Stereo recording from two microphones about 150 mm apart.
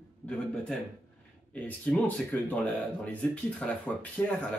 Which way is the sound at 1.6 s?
10° left (ahead or behind).